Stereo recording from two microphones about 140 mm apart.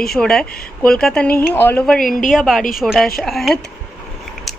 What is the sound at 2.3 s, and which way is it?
Speech, centre (ahead or behind).